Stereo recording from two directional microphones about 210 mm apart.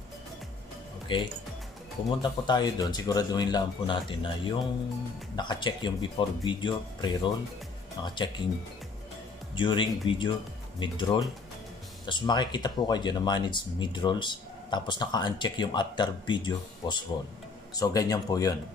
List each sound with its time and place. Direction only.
1.1 s speech: 25° left (ahead or behind)
9.6 s speech: 25° left (ahead or behind)